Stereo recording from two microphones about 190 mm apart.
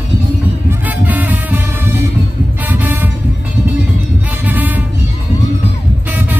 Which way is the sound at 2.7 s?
10° right (ahead or behind).